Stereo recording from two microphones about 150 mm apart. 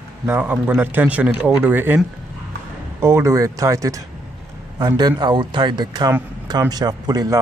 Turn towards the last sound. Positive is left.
turn(degrees=-25)  # may be behind; listen again after turning